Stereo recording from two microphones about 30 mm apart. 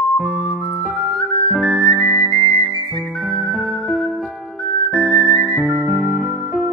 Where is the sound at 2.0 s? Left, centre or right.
Left.